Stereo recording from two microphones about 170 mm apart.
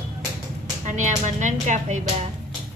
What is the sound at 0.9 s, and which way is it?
Speech, 45° right (ahead or behind).